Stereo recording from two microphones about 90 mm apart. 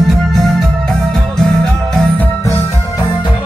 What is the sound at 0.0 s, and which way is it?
Music, centre (ahead or behind).